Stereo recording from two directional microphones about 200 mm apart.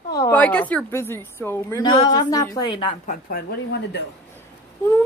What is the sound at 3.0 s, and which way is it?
Speech, 50° left (ahead or behind).